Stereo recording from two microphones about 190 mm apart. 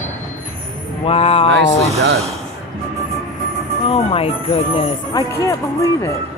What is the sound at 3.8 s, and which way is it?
Speech, 30° left (ahead or behind).